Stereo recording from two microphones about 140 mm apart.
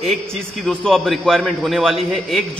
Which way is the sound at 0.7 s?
5° left (ahead or behind).